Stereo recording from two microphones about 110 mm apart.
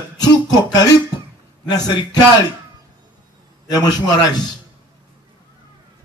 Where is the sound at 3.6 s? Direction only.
35° left (ahead or behind).